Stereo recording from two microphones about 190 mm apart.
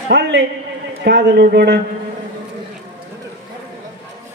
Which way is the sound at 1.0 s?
60° right (ahead or behind).